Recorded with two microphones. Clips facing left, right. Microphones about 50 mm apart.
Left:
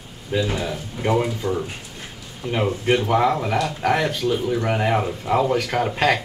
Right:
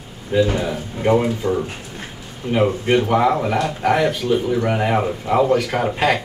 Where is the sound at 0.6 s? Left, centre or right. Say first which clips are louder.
Right 3 dB; centre.